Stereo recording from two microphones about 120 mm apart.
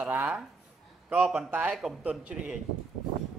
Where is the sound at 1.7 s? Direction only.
5° right (ahead or behind).